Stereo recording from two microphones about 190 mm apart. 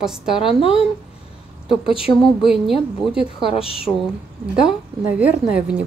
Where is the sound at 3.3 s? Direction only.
30° left (ahead or behind).